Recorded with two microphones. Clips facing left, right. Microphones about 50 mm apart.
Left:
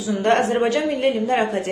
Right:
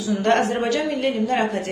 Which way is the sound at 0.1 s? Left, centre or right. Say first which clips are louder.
Left 1 dB; centre.